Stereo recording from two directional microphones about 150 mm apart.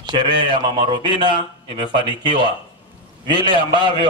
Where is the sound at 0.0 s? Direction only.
30° right (ahead or behind).